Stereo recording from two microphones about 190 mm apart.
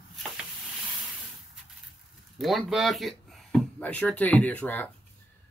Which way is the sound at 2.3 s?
Centre (ahead or behind).